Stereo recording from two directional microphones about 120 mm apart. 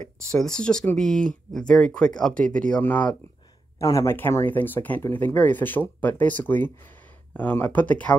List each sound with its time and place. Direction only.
0.3 s speech: 5° left (ahead or behind)
3.8 s speech: 25° left (ahead or behind)